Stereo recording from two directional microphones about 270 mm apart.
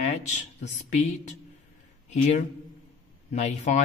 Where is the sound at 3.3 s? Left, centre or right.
Left.